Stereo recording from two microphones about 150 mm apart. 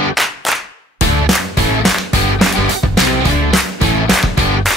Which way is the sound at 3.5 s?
Centre (ahead or behind).